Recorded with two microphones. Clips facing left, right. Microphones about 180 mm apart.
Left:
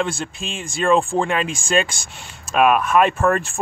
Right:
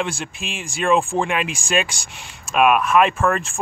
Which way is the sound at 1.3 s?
35° left (ahead or behind).